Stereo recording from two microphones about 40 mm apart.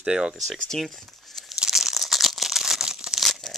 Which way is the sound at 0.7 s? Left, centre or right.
Centre.